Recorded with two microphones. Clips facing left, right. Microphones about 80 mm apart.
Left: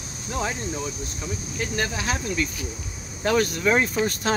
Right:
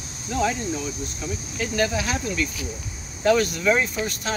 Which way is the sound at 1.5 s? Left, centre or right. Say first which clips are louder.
Right 4 dB; left.